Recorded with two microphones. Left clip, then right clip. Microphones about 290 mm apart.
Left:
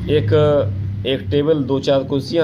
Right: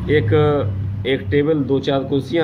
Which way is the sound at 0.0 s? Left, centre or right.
Centre.